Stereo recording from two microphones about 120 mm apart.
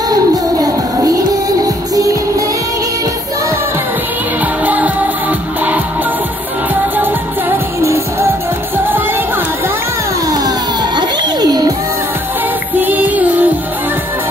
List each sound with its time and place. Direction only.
0.1 s music: 30° right (ahead or behind)
4.6 s music: 15° right (ahead or behind)
6.7 s music: 15° right (ahead or behind)
10.2 s music: 30° right (ahead or behind)
12.8 s music: 15° right (ahead or behind)